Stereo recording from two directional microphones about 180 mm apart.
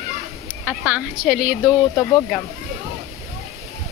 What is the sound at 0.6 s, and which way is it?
Speech, 10° right (ahead or behind).